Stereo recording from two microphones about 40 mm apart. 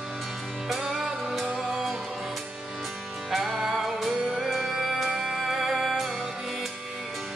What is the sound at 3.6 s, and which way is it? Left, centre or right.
Music, centre.